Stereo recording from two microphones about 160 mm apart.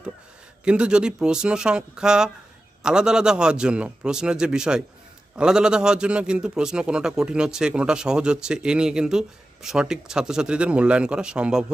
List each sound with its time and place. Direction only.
0.7 s a man's voice: 5° right (ahead or behind)